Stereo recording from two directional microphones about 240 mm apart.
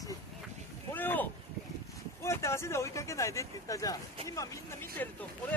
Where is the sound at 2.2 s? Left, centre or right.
Centre.